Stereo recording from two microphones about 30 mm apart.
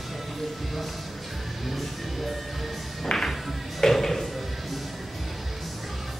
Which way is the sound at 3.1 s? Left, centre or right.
Left.